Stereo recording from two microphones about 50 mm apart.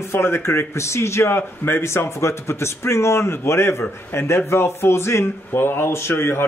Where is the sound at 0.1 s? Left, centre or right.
Left.